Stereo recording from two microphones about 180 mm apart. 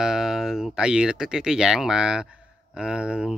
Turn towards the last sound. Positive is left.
turn(degrees=-5)  # may be behind; listen again after turning